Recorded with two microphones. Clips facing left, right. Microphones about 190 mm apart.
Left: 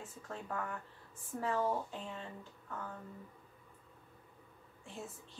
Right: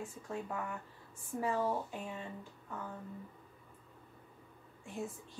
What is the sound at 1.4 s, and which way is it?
Speech, 10° right (ahead or behind).